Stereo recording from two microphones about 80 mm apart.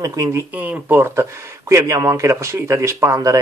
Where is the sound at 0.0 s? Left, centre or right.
Right.